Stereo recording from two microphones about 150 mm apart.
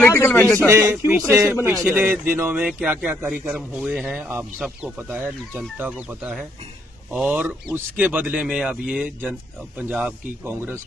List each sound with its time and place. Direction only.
0.0 s a man's voice: 15° left (ahead or behind)
0.7 s speech: 15° right (ahead or behind)
1.7 s speech: centre (ahead or behind)
2.0 s speech: 15° right (ahead or behind)
4.9 s speech: 10° right (ahead or behind)